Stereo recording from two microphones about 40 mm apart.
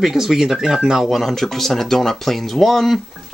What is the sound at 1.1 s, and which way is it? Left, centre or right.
Speech, centre.